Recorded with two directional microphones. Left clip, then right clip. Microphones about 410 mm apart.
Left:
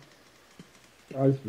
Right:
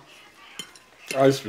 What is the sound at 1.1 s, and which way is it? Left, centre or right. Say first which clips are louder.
Speech: right 8 dB; centre.